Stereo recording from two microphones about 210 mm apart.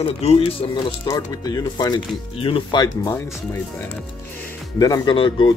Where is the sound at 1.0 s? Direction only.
15° left (ahead or behind).